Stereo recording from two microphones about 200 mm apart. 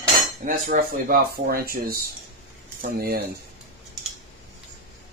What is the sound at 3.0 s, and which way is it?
Speech, 50° right (ahead or behind).